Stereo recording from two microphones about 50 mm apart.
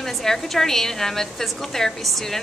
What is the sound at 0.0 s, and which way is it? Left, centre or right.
A woman's voice, centre.